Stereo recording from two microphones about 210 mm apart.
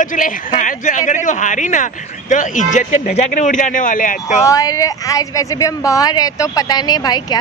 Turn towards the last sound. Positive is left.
turn(degrees=20)  # may be behind; listen again after turning